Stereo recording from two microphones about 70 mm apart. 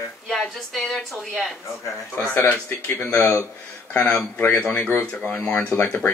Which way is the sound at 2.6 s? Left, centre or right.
Left.